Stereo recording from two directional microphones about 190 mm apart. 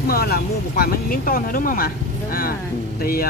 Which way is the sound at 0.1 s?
55° left (ahead or behind).